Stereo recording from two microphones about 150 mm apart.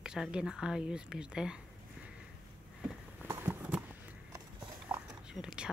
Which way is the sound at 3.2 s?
15° right (ahead or behind).